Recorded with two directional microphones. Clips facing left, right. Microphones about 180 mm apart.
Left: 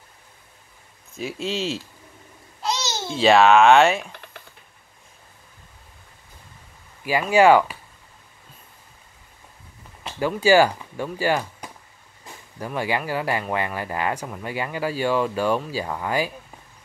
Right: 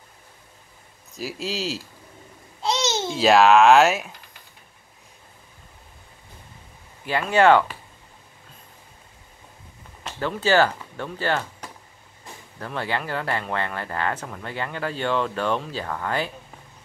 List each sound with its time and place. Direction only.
1.1 s speech: centre (ahead or behind)
2.6 s babbling: 20° right (ahead or behind)
3.1 s speech: centre (ahead or behind)
7.1 s speech: 10° left (ahead or behind)
10.0 s speech: 10° left (ahead or behind)